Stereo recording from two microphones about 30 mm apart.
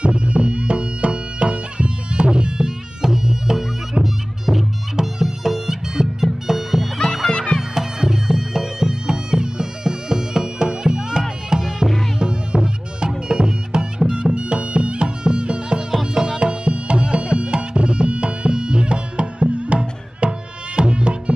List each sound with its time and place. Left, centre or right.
0.0 s music: right; by 6.8 s centre
7.2 s music: left
7.7 s music: centre; by 15.8 s right
15.9 s music: centre
16.3 s music: right